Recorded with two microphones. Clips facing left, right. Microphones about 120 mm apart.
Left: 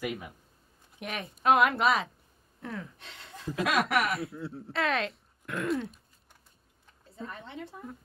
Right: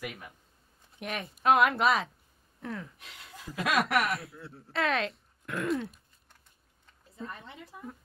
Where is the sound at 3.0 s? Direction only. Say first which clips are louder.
Left 2 dB; 30° left (ahead or behind).